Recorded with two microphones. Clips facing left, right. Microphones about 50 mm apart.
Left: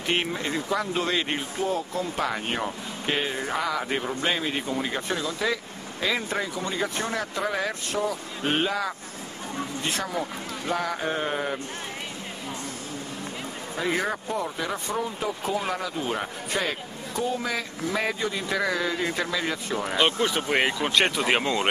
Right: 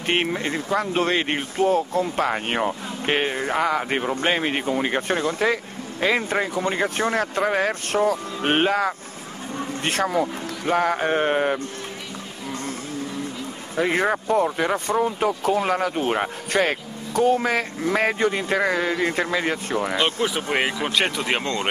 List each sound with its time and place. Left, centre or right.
0.0 s speech: right
13.7 s speech: right
19.8 s speech: centre